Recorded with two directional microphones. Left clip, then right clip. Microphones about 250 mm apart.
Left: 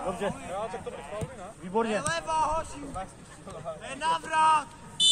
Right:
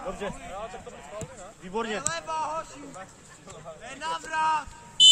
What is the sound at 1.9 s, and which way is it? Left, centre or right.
A man's voice, left.